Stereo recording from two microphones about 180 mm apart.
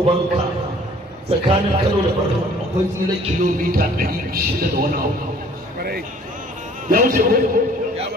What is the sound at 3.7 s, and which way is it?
A man's voice, 55° right (ahead or behind).